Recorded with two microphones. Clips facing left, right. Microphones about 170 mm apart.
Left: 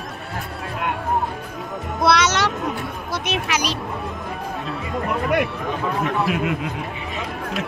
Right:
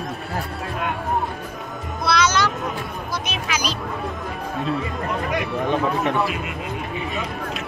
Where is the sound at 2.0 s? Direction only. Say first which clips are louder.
Left 2 dB; 75° left (ahead or behind).